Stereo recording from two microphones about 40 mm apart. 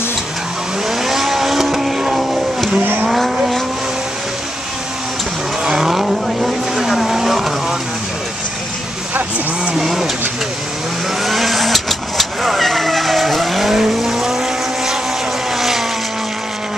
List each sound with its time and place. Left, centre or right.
0.8 s vehicle: centre
2.8 s vehicle: right
3.1 s vehicle: centre
5.7 s vehicle: centre
9.8 s vehicle: centre
11.2 s vehicle: centre
15.5 s vehicle: centre